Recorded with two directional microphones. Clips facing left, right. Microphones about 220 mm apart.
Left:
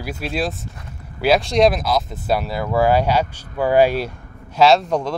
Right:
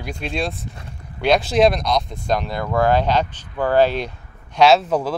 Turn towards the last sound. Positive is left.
turn(degrees=-5)  # may be behind; listen again after turning